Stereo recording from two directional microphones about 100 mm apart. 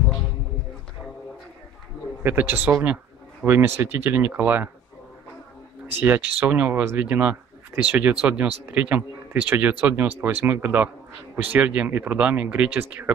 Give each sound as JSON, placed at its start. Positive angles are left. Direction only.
{"t": 2.2, "sound": "speech", "side_deg": -20}
{"t": 5.9, "sound": "speech", "side_deg": -20}